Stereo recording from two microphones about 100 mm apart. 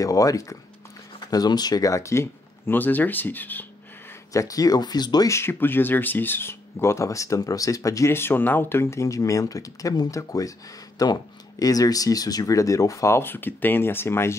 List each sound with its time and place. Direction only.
0.0 s speech: 35° left (ahead or behind); by 3.6 s 20° left (ahead or behind)
4.3 s speech: 35° left (ahead or behind)
5.3 s speech: 25° left (ahead or behind)